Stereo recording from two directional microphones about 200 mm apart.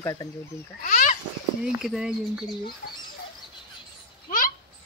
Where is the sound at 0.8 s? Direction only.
40° left (ahead or behind).